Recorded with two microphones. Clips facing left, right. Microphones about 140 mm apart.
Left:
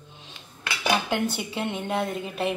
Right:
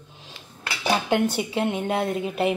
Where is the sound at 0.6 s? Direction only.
30° right (ahead or behind).